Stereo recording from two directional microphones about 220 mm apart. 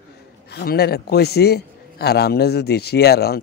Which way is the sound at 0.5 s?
45° left (ahead or behind).